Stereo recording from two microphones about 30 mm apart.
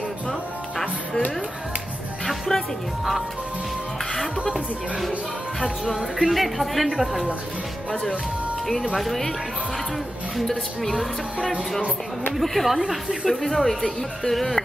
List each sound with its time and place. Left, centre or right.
0.3 s music: centre
2.2 s music: centre
5.9 s speech: right
6.3 s speech: centre
8.9 s speech: centre
10.4 s speech: centre
12.4 s speech: centre